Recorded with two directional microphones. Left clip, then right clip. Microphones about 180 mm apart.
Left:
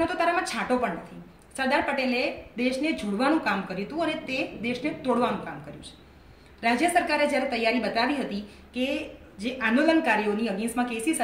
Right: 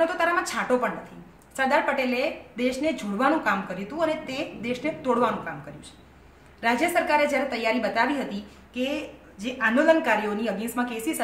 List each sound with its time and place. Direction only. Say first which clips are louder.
0.0 s a woman's voice: right 2 dB; 20° right (ahead or behind)
6.6 s a woman's voice: even; 15° right (ahead or behind)